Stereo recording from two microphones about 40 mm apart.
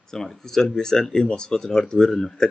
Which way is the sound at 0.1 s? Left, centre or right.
Centre.